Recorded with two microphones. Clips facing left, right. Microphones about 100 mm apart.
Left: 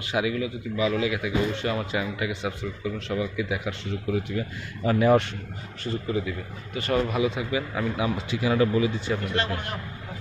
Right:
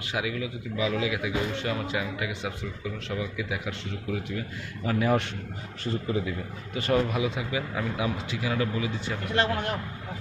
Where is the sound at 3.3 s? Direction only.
5° left (ahead or behind).